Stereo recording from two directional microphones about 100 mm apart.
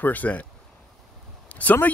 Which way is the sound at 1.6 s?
15° left (ahead or behind).